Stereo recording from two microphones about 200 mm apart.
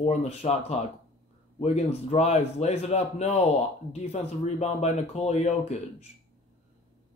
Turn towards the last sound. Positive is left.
turn(degrees=35)  # may be behind; listen again after turning